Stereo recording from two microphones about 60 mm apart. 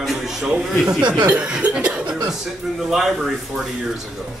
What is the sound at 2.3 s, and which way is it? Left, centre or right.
A man's voice, centre.